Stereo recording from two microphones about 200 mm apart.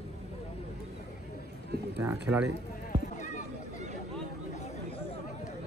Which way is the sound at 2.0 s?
10° right (ahead or behind).